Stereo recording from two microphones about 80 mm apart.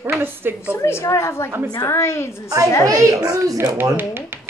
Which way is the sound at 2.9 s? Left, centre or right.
Right.